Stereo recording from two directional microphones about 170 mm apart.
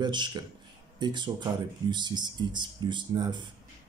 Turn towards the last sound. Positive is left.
turn(degrees=-25)  # may be behind; listen again after turning